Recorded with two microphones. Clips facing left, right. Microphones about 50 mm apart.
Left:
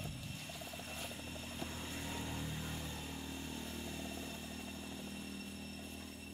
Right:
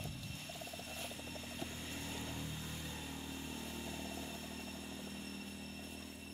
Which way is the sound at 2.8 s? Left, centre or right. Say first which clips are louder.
Even; centre.